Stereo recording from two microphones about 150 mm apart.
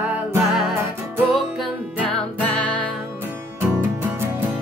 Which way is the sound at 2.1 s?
10° left (ahead or behind).